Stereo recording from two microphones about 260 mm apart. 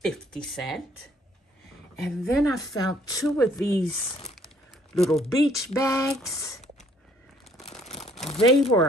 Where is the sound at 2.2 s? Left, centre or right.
Centre.